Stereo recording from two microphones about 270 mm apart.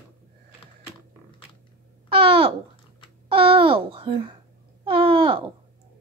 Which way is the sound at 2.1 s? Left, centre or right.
Centre.